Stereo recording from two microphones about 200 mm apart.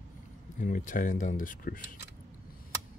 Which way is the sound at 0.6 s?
40° left (ahead or behind).